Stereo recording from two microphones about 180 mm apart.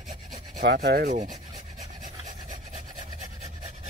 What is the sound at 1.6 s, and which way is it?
Filing, 45° right (ahead or behind).